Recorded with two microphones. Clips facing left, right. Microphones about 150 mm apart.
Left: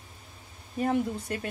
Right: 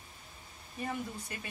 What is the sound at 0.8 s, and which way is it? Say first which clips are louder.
Speech: left 11 dB; 60° left (ahead or behind).